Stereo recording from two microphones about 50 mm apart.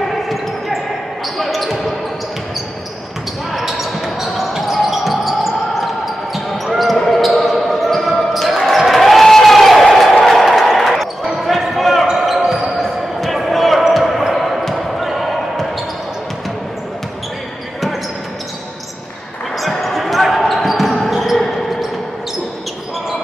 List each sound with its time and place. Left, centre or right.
0.1 s basketball bounce: centre
3.5 s basketball bounce: centre
19.6 s basketball bounce: centre